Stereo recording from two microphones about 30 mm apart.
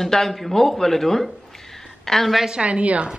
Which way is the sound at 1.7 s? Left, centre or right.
Centre.